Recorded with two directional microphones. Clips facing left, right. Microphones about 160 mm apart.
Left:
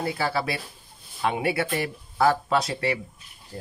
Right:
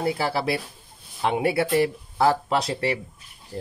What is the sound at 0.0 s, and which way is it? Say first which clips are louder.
Speech: right 2 dB; 25° right (ahead or behind).